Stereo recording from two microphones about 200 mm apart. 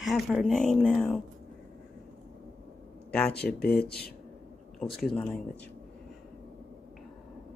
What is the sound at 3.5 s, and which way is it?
Speech, 50° left (ahead or behind).